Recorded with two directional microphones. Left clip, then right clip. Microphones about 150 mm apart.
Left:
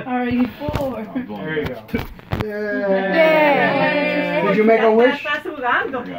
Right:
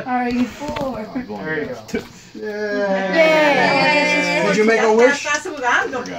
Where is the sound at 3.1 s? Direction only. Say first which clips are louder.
Right 1 dB; 10° right (ahead or behind).